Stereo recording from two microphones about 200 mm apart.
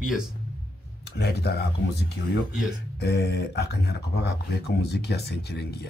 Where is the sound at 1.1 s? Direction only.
55° left (ahead or behind).